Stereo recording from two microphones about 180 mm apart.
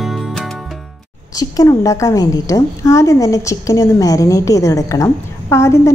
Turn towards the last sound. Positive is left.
turn(degrees=15)  # may be behind; listen again after turning